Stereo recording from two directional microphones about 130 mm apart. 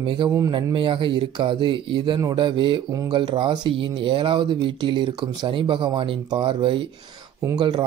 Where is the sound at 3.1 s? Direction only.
40° right (ahead or behind).